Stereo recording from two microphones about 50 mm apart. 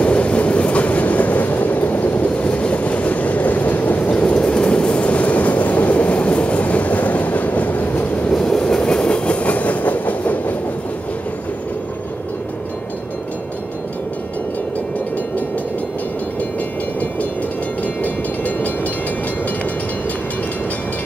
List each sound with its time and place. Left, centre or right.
0.0 s train: left
8.3 s train: centre; by 10.5 s left
18.0 s train: left